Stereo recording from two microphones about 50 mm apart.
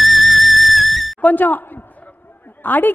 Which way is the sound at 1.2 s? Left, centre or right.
Left.